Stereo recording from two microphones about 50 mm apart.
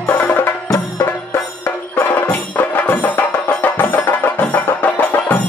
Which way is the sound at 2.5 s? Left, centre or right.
Left.